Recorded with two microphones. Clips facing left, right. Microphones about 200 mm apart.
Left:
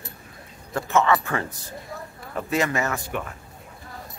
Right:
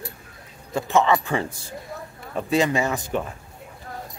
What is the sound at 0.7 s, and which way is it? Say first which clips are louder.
Speech: right 1 dB; 15° right (ahead or behind).